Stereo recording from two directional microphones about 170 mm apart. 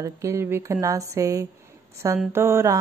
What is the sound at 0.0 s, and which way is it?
Speech, 15° right (ahead or behind).